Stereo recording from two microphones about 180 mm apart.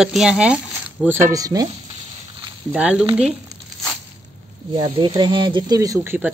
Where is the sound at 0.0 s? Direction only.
5° right (ahead or behind); by 1.7 s 20° right (ahead or behind).